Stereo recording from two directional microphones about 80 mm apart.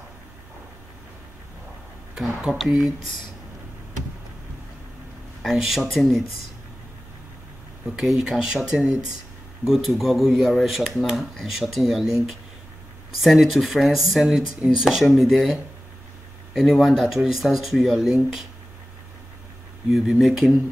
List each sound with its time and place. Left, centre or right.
2.1 s speech: centre
5.4 s speech: centre
7.8 s speech: centre
13.2 s speech: centre
19.9 s speech: centre